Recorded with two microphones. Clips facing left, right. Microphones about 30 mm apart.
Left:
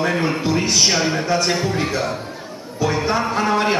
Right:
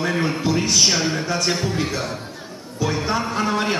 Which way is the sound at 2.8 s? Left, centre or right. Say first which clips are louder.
Left 3 dB; centre.